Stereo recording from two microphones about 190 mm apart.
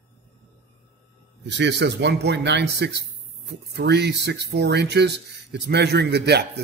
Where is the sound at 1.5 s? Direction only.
65° right (ahead or behind).